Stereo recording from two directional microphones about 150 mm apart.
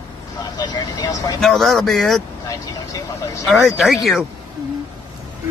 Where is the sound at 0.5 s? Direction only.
25° left (ahead or behind).